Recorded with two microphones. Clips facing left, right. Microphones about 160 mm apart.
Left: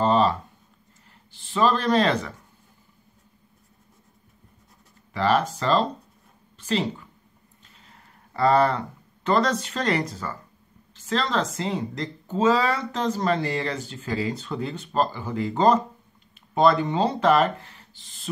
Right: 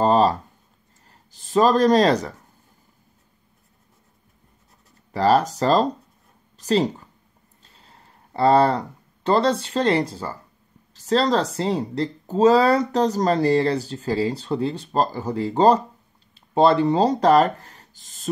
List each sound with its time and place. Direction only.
0.0 s a sound: 40° right (ahead or behind)
1.3 s speech: 40° right (ahead or behind)
5.1 s speech: 35° right (ahead or behind)